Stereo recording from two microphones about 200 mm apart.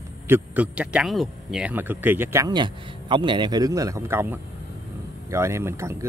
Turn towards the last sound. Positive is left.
turn(degrees=-15)  # may be behind; listen again after turning